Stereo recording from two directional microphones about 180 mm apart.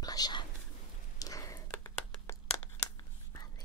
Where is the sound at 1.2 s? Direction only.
20° left (ahead or behind).